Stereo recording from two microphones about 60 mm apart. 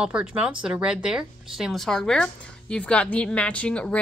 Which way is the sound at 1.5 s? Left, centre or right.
Centre.